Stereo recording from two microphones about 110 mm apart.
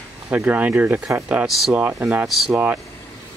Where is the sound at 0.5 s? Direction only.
15° right (ahead or behind).